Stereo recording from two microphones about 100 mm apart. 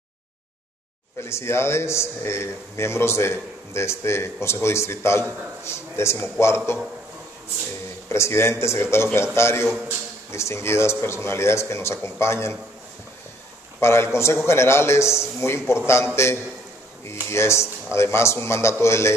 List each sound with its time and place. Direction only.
1.2 s a man's voice: 25° left (ahead or behind)
8.1 s a man's voice: 30° left (ahead or behind)
13.7 s a man's voice: 25° left (ahead or behind)